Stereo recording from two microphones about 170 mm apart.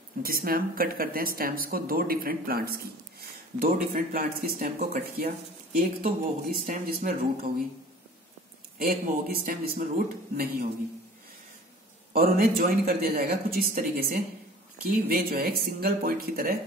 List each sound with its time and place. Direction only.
0.2 s speech: 60° right (ahead or behind)
8.7 s speech: 55° right (ahead or behind)
12.1 s speech: 60° right (ahead or behind)